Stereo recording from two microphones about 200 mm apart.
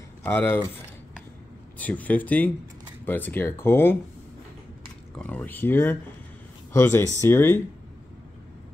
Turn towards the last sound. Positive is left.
turn(degrees=10)  # may be behind; listen again after turning